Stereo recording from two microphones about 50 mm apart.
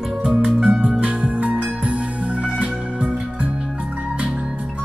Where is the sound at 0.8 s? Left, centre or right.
Right.